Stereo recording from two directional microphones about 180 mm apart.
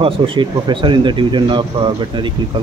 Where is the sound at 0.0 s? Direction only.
25° right (ahead or behind).